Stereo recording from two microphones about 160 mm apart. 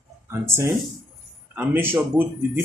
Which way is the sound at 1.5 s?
10° right (ahead or behind).